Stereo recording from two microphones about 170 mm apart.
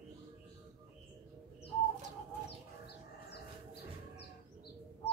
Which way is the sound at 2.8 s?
75° left (ahead or behind).